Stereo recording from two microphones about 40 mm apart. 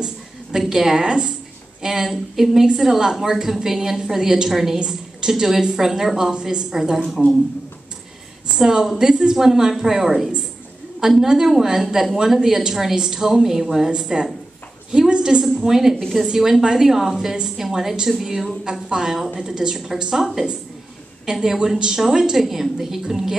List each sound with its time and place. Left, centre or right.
0.0 s a sound: centre
1.0 s speech: right
1.8 s a woman's voice: centre
8.5 s a woman's voice: centre
21.3 s a woman's voice: centre